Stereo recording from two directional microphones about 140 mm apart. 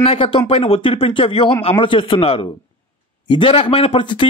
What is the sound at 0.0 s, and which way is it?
A man's voice, 40° left (ahead or behind).